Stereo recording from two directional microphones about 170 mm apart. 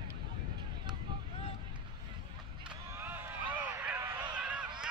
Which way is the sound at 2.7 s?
10° right (ahead or behind).